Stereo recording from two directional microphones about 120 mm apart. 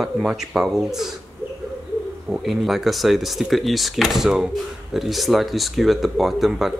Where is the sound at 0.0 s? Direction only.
5° right (ahead or behind).